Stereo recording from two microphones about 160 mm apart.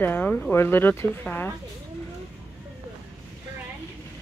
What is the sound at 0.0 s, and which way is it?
Speech, 10° left (ahead or behind).